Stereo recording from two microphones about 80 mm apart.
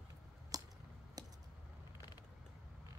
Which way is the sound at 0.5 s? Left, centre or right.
Right.